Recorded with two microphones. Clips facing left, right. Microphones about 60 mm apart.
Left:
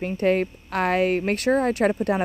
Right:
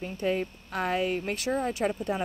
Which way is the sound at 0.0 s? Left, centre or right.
Left.